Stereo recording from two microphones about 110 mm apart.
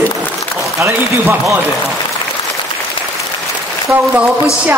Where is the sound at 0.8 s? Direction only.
25° right (ahead or behind).